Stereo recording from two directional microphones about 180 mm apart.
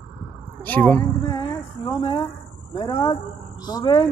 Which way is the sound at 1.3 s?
25° left (ahead or behind).